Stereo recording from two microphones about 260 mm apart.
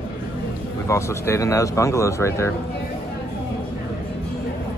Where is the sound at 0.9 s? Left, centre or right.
Centre.